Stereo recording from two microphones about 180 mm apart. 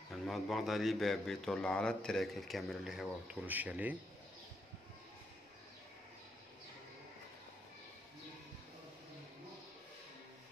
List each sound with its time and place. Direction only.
0.1 s a man's voice: centre (ahead or behind)